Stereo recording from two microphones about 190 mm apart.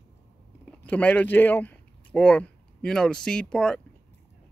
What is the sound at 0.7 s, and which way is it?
Speech, 5° left (ahead or behind).